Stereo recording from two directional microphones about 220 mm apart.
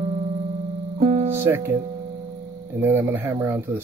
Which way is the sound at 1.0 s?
25° right (ahead or behind).